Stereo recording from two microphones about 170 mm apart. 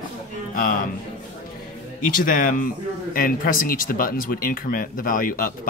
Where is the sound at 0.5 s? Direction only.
55° left (ahead or behind).